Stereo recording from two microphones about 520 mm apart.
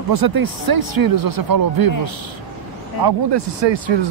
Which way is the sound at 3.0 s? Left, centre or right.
Right.